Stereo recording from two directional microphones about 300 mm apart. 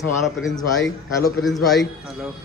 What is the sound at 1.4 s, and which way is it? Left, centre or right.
Speech, centre.